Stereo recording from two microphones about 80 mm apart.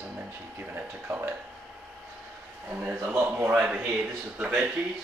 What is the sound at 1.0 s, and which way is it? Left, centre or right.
Speech, right.